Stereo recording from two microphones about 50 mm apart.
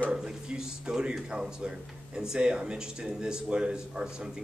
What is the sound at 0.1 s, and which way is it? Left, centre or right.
Speech, centre.